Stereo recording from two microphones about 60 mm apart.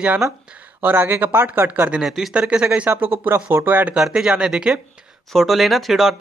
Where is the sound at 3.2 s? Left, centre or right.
Right.